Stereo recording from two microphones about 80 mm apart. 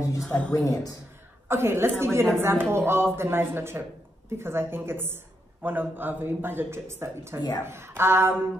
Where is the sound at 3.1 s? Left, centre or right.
Right.